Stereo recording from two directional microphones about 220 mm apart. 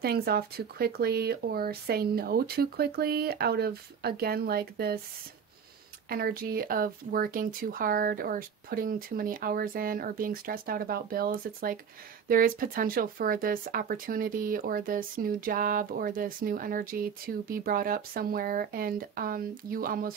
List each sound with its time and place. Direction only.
0.0 s speech: 45° right (ahead or behind)
6.0 s speech: 40° right (ahead or behind)